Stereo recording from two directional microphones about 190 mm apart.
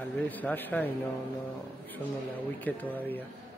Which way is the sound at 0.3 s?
10° left (ahead or behind).